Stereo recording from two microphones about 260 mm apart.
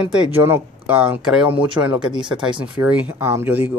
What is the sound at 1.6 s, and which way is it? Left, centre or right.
Speech, centre.